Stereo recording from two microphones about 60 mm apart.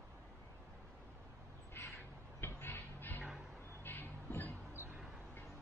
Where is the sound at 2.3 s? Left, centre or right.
Left.